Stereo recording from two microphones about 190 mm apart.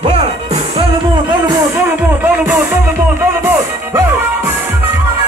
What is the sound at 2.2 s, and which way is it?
Music, 10° right (ahead or behind).